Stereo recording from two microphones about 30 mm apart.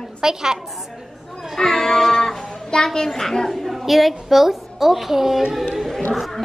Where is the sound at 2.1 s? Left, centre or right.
Centre.